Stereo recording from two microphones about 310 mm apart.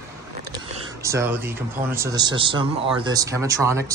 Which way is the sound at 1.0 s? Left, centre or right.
Centre.